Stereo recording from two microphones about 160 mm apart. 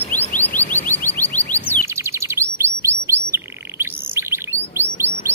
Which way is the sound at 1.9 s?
20° right (ahead or behind).